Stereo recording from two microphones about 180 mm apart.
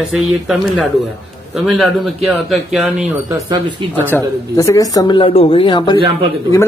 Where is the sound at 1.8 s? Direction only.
Centre (ahead or behind).